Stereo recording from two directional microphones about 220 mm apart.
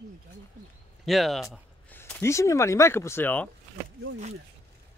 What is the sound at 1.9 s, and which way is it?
Speech, 10° left (ahead or behind).